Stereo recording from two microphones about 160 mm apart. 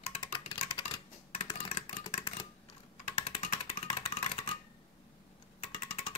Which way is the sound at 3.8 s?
35° left (ahead or behind).